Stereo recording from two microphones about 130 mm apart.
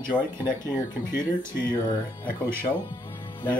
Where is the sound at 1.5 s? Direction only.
35° left (ahead or behind).